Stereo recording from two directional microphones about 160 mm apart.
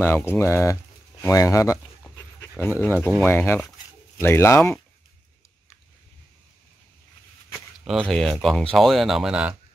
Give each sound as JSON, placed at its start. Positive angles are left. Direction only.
{"t": 0.0, "sound": "speech", "side_deg": 15}
{"t": 7.8, "sound": "speech", "side_deg": 0}